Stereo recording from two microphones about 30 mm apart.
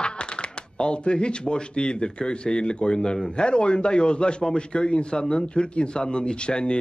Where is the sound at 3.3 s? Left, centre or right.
Left.